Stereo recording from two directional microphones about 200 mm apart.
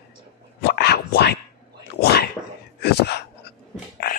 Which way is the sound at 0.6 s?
55° left (ahead or behind).